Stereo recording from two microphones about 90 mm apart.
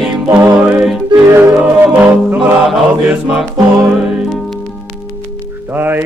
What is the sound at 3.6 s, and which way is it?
Music, 45° right (ahead or behind).